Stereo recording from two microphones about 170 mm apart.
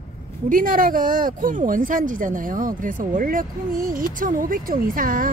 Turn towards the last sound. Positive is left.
turn(degrees=-55)  # may be behind; listen again after turning